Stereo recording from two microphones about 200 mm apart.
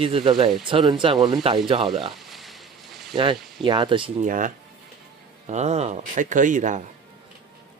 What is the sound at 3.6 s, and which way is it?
Speech, 25° right (ahead or behind).